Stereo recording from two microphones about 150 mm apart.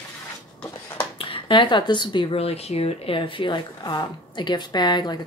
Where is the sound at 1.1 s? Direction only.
35° left (ahead or behind).